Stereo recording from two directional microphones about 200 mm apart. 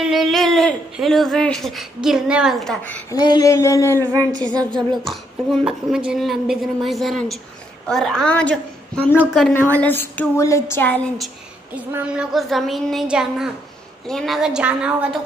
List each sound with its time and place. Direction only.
0.0 s speech: centre (ahead or behind)
3.2 s a woman's voice: 20° left (ahead or behind)
4.0 s a sound: 20° right (ahead or behind)
5.0 s a woman's voice: centre (ahead or behind)
9.1 s speech: 5° right (ahead or behind)
9.8 s a woman's voice: 10° left (ahead or behind)
11.7 s speech: 5° right (ahead or behind)